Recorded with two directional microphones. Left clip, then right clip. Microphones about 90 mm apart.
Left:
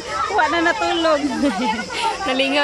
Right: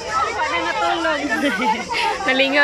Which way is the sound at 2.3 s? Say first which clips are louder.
Right 3 dB; 20° left (ahead or behind).